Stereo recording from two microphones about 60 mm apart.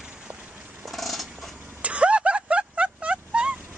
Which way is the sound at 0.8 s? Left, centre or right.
Centre.